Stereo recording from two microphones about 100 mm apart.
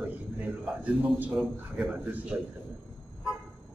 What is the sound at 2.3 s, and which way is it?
Speech, 15° right (ahead or behind).